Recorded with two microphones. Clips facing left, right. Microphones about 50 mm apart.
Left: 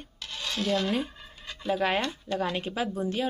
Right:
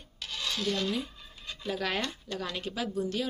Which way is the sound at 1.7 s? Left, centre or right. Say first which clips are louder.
Left 5 dB; left.